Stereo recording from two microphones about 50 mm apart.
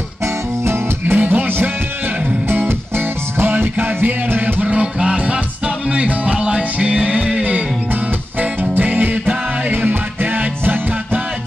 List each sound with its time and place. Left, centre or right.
0.7 s music: right
1.2 s music: right
3.3 s music: right
4.6 s music: right
8.4 s music: right